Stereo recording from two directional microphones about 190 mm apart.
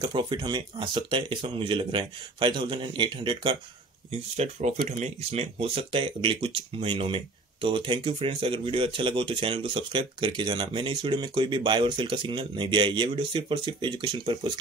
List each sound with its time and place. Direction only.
0.0 s speech: 25° right (ahead or behind)
4.4 s speech: 35° right (ahead or behind)